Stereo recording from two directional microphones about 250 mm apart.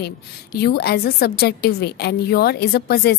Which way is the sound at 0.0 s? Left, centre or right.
Left.